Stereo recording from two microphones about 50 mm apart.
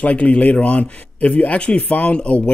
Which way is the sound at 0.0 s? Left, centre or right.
Left.